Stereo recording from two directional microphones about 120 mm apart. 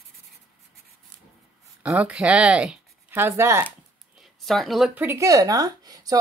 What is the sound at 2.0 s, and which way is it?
Speech, 10° right (ahead or behind).